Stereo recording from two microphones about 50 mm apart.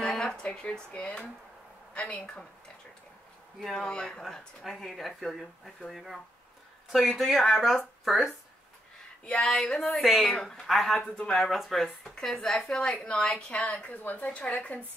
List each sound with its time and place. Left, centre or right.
0.1 s a sound: centre
0.4 s speech: centre
3.6 s speech: centre
4.6 s speech: centre
9.2 s speech: centre
9.5 s speech: centre
11.0 s speech: centre
11.3 s speech: centre; by 14.5 s left